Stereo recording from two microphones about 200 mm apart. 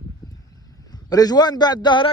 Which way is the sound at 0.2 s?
20° left (ahead or behind).